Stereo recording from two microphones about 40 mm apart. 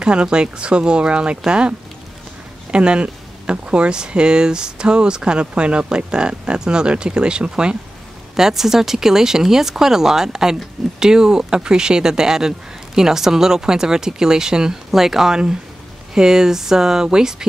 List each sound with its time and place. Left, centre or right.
0.0 s speech: right
8.4 s speech: centre